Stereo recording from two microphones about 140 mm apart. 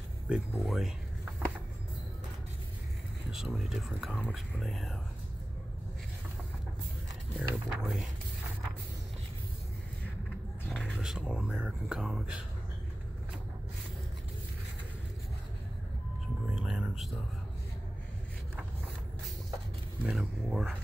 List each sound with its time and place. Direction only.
0.3 s speech: centre (ahead or behind)
3.3 s speech: centre (ahead or behind)
7.3 s speech: centre (ahead or behind)
10.7 s speech: centre (ahead or behind)
16.5 s music: 5° right (ahead or behind)
20.1 s speech: 5° right (ahead or behind)